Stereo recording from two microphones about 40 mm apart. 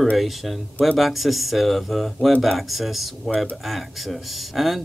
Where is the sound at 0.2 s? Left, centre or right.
Centre.